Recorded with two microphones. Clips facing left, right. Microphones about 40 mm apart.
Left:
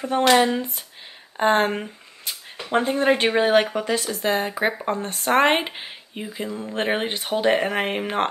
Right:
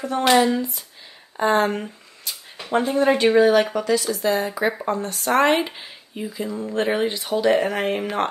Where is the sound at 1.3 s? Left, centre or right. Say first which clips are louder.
Even; left.